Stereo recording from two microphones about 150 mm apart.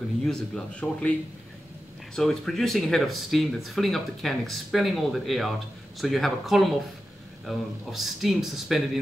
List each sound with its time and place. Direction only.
0.2 s speech: 5° left (ahead or behind)
2.1 s speech: centre (ahead or behind)